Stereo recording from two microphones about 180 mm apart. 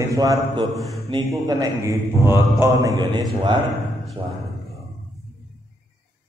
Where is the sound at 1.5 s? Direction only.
20° right (ahead or behind).